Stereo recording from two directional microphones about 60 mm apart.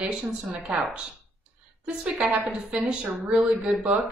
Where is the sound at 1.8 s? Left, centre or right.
Centre.